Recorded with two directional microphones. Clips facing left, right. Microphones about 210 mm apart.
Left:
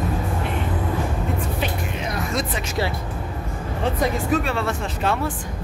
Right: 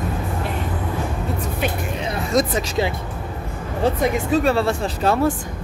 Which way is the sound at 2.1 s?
40° right (ahead or behind).